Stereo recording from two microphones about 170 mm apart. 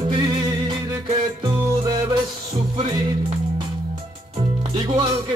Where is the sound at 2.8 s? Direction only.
25° right (ahead or behind).